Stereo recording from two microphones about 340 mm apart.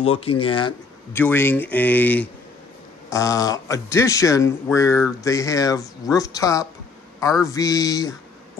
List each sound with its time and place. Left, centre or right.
0.0 s speech: centre